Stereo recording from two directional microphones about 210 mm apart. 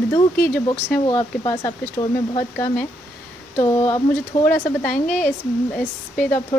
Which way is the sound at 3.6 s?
15° left (ahead or behind).